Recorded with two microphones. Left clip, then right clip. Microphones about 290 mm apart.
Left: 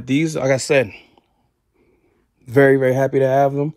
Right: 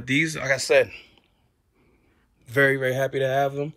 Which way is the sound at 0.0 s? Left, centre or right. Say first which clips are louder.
Left 4 dB; centre.